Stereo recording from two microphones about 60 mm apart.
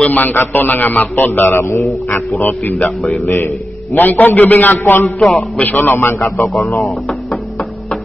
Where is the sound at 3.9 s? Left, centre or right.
Left.